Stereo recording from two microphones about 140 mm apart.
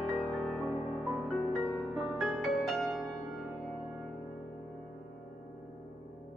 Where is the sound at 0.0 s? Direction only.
Centre (ahead or behind).